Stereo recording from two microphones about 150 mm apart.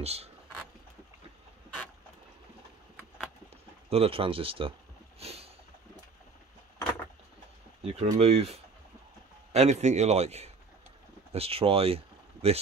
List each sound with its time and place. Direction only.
0.0 s a man's voice: 45° right (ahead or behind)
3.9 s speech: 40° right (ahead or behind)
5.2 s a sound: 40° right (ahead or behind)
7.8 s a man's voice: 40° right (ahead or behind)